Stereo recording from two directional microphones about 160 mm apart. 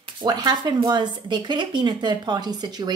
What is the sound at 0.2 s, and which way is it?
A woman's voice, 25° right (ahead or behind).